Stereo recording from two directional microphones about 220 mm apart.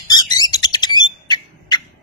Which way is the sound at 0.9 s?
20° left (ahead or behind).